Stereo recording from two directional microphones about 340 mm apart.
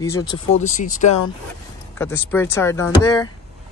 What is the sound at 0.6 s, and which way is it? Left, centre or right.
Speech, left.